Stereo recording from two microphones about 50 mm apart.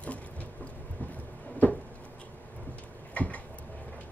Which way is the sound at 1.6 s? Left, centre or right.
Left.